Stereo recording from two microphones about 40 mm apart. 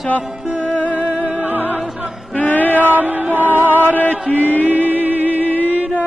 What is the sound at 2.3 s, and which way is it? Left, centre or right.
Male singing, left.